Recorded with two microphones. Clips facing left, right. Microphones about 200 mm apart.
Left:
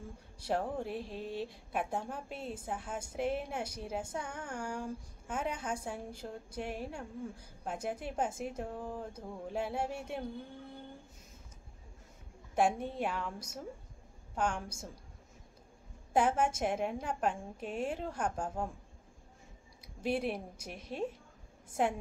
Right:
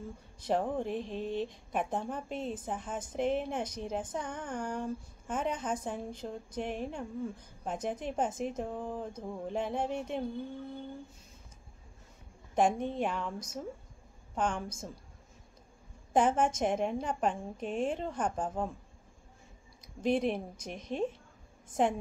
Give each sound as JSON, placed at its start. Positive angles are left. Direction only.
{"t": 0.6, "sound": "a sound", "side_deg": -20}
{"t": 0.8, "sound": "a woman's voice", "side_deg": 10}
{"t": 8.7, "sound": "a sound", "side_deg": -20}
{"t": 9.1, "sound": "a woman's voice", "side_deg": 10}
{"t": 12.5, "sound": "a woman's voice", "side_deg": 10}
{"t": 16.1, "sound": "a woman's voice", "side_deg": 10}
{"t": 20.0, "sound": "a woman's voice", "side_deg": 10}